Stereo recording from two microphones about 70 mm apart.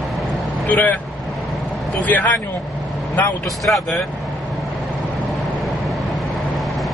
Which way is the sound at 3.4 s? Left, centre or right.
Centre.